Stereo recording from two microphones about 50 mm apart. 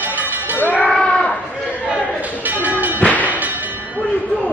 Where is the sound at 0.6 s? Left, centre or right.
Left.